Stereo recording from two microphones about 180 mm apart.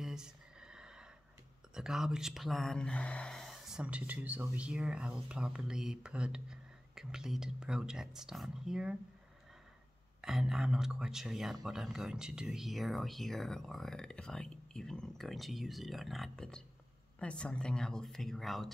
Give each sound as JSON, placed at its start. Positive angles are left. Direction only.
{"t": 0.0, "sound": "a sound", "side_deg": -5}
{"t": 1.7, "sound": "speech", "side_deg": -5}
{"t": 10.2, "sound": "speech", "side_deg": -5}